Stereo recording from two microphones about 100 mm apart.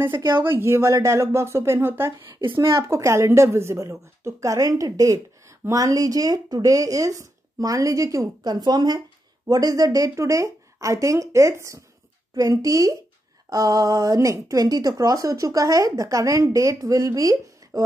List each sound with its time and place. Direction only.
0.2 s speech: 50° right (ahead or behind)
0.5 s speech: 25° right (ahead or behind)